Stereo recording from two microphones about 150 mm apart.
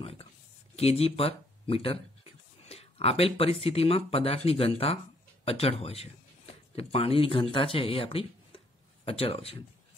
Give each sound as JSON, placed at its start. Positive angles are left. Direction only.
{"t": 0.0, "sound": "speech", "side_deg": 40}
{"t": 0.7, "sound": "a sound", "side_deg": 40}
{"t": 3.6, "sound": "speech", "side_deg": 40}